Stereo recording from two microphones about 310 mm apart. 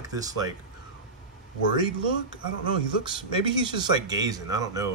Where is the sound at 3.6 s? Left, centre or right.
Centre.